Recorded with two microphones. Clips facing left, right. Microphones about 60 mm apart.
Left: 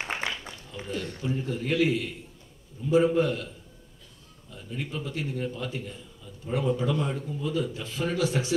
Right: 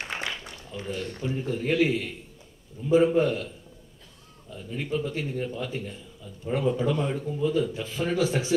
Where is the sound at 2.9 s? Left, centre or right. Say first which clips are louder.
Right 2 dB; right.